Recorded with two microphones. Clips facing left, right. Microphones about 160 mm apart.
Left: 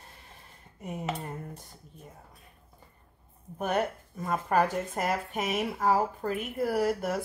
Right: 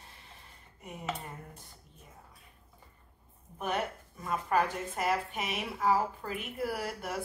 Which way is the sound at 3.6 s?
45° left (ahead or behind).